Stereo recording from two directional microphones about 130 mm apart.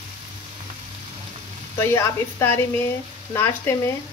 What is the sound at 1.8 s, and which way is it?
Speech, 20° left (ahead or behind).